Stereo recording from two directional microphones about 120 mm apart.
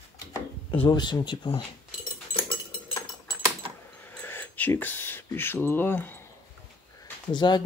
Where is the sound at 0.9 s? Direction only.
35° left (ahead or behind).